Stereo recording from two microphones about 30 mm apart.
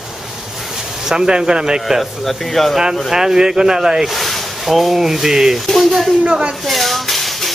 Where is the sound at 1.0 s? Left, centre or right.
Right.